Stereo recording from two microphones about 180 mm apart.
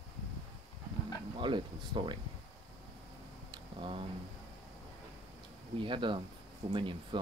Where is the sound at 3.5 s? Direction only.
25° right (ahead or behind).